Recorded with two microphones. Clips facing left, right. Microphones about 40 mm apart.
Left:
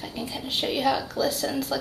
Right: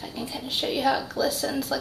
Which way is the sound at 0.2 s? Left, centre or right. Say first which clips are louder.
Even; centre.